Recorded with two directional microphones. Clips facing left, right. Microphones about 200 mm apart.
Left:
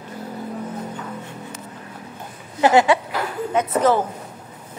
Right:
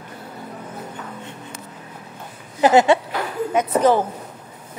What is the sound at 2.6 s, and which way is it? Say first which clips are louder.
A woman's voice: right 1 dB; 20° right (ahead or behind).